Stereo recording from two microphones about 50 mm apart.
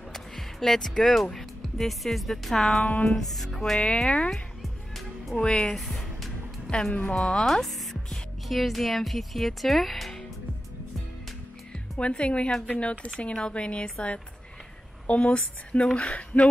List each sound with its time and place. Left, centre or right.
0.1 s speech: centre
2.8 s music: left
3.2 s speech: centre
3.8 s speech: centre
4.3 s music: centre
5.3 s speech: centre
6.9 s speech: left
7.2 s speech: centre
12.0 s speech: left